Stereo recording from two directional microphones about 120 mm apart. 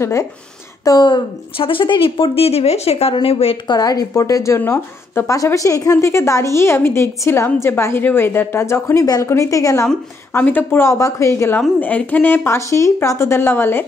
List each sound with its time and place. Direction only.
0.0 s a woman's voice: 25° left (ahead or behind)
0.8 s a woman's voice: 35° left (ahead or behind); by 3.5 s 55° left (ahead or behind)
3.6 s a woman's voice: 35° left (ahead or behind)
10.3 s a woman's voice: 15° left (ahead or behind)